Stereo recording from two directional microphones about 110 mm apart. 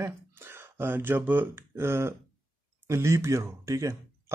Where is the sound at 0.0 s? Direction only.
20° right (ahead or behind).